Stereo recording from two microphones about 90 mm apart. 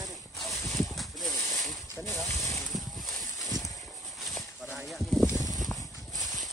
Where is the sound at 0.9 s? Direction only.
Centre (ahead or behind).